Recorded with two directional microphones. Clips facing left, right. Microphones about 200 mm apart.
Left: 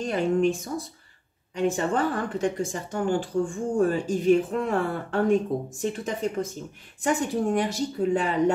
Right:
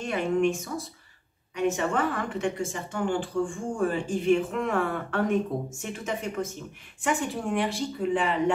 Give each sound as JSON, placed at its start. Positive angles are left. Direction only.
{"t": 0.0, "sound": "speech", "side_deg": 35}